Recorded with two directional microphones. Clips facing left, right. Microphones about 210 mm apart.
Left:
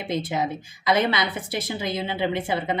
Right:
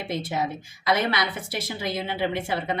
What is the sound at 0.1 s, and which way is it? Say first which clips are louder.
Speech: left 3 dB; 20° left (ahead or behind).